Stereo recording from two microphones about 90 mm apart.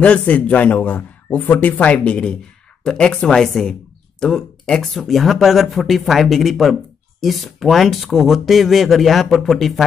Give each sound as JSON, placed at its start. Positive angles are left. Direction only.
{"t": 0.0, "sound": "a man's voice", "side_deg": 15}